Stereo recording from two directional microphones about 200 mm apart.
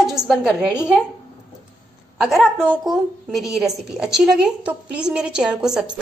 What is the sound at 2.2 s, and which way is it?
A woman's voice, centre (ahead or behind).